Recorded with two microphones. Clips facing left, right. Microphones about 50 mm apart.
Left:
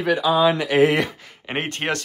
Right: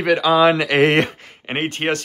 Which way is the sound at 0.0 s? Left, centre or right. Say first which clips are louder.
Right 3 dB; right.